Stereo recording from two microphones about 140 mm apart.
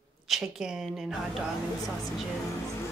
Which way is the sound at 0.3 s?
5° right (ahead or behind).